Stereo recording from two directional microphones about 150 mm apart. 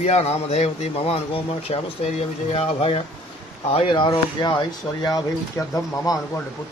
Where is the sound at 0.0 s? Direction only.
45° left (ahead or behind); by 5.7 s 20° left (ahead or behind).